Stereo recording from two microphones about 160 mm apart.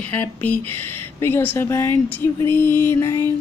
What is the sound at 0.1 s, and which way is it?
Speech, 10° left (ahead or behind).